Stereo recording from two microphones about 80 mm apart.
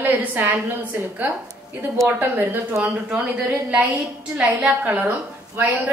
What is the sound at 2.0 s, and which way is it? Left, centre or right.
Speech, right.